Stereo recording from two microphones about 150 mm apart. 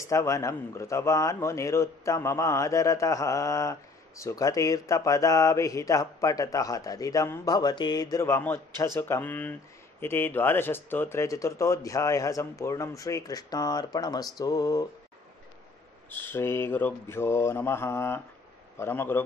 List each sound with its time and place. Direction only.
0.0 s speech: 20° left (ahead or behind)
16.1 s mantra: 15° left (ahead or behind)